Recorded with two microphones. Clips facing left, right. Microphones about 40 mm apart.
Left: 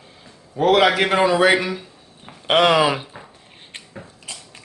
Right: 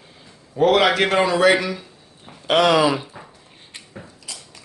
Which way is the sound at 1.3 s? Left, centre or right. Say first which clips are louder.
Even; centre.